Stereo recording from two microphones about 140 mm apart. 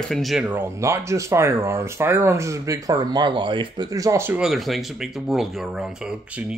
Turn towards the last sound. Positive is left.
turn(degrees=-5)  # may be behind; listen again after turning